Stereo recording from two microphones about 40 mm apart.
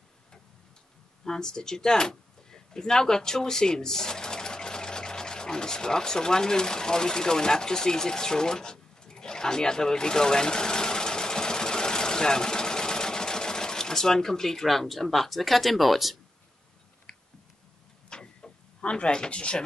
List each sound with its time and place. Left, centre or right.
1.2 s speech: centre
18.1 s a sound: centre
18.8 s speech: left